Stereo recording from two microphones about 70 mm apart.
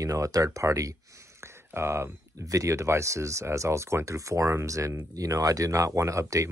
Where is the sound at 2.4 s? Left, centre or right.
Right.